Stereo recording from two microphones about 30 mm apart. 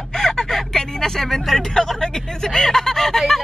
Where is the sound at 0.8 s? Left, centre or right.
Centre.